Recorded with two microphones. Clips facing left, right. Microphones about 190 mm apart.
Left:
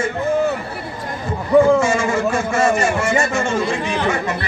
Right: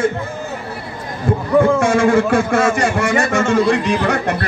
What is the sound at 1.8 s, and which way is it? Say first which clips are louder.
A man's voice: right 5 dB; 55° right (ahead or behind).